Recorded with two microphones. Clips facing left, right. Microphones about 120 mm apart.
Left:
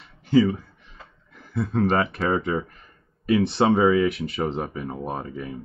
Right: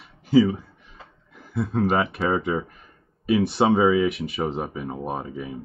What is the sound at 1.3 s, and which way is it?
Speech, 5° right (ahead or behind).